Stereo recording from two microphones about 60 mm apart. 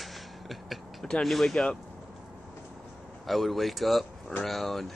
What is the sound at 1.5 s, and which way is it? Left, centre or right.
Speech, centre.